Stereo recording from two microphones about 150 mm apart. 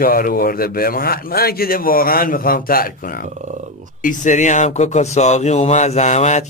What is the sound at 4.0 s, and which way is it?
A man's voice, 60° left (ahead or behind).